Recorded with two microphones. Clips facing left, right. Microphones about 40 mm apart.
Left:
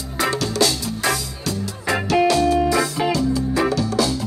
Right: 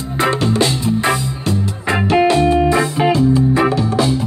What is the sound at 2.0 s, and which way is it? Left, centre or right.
Music, right.